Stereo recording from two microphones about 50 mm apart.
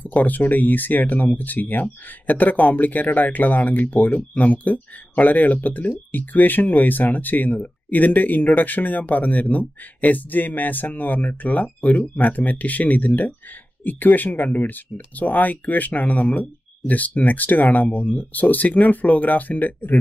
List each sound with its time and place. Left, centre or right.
0.0 s speech: left